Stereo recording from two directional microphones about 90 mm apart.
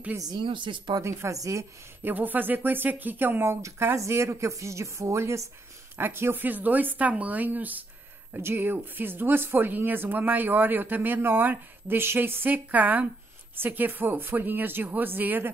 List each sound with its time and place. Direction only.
0.2 s speech: 55° right (ahead or behind)
0.9 s speech: 35° right (ahead or behind)
2.0 s speech: 20° right (ahead or behind)
3.6 s speech: 35° right (ahead or behind)